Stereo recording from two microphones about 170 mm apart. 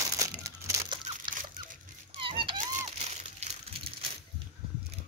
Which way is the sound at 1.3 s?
30° right (ahead or behind).